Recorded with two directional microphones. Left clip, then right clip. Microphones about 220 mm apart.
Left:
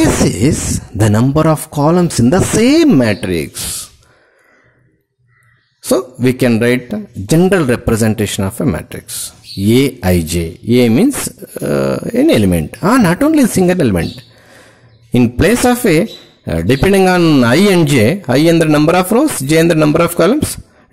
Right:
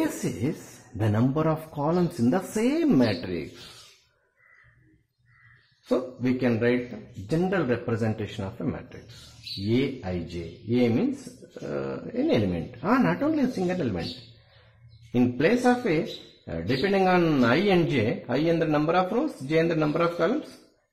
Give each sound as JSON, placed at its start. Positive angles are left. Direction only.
{"t": 0.9, "sound": "speech", "side_deg": 45}
{"t": 5.9, "sound": "speech", "side_deg": 45}
{"t": 15.1, "sound": "speech", "side_deg": 45}